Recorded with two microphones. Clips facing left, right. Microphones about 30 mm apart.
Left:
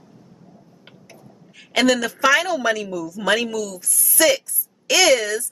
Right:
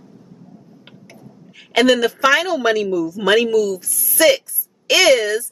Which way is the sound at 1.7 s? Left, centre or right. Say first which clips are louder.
Right 4 dB; centre.